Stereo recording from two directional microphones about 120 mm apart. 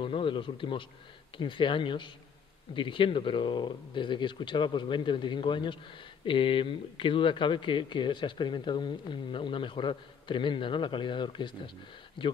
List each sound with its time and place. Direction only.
0.0 s speech: 45° left (ahead or behind)